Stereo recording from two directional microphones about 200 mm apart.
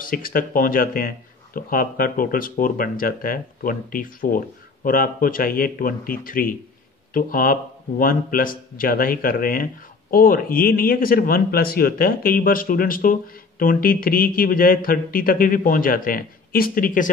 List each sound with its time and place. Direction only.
0.0 s speech: 45° left (ahead or behind)